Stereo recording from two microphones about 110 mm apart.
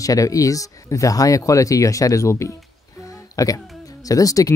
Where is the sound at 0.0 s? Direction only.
30° left (ahead or behind).